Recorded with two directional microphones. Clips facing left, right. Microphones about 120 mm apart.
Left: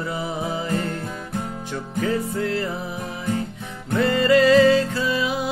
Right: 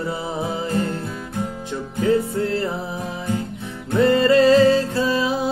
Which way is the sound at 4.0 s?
30° right (ahead or behind).